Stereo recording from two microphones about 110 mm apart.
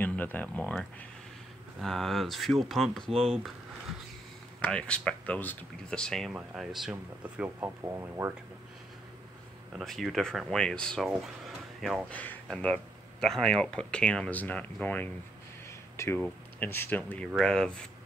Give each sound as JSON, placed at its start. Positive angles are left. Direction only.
{"t": 0.0, "sound": "speech", "side_deg": 15}
{"t": 1.8, "sound": "speech", "side_deg": 0}
{"t": 4.6, "sound": "speech", "side_deg": 10}
{"t": 7.4, "sound": "speech", "side_deg": -25}
{"t": 9.7, "sound": "speech", "side_deg": 0}
{"t": 11.1, "sound": "a sound", "side_deg": 0}
{"t": 12.1, "sound": "speech", "side_deg": 15}
{"t": 16.0, "sound": "speech", "side_deg": 25}